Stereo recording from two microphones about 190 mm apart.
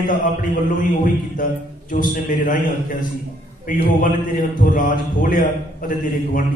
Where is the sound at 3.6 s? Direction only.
45° left (ahead or behind).